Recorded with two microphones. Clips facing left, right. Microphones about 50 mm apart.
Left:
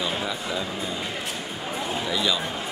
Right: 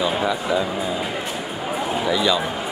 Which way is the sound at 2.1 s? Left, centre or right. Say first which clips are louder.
Right 6 dB; centre.